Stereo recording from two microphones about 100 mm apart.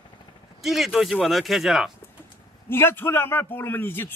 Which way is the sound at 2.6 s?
25° left (ahead or behind).